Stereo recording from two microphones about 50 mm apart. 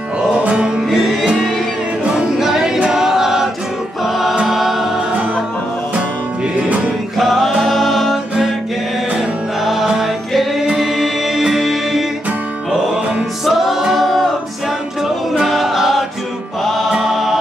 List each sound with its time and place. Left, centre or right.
0.5 s music: right
0.8 s music: centre
2.9 s choir: centre
4.0 s music: centre
4.5 s choir: centre
7.2 s music: centre
9.7 s music: centre
13.5 s music: centre
15.3 s a capella: centre
16.6 s music: centre